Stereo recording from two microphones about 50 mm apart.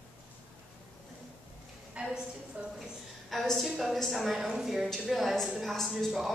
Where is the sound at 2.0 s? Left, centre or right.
Right.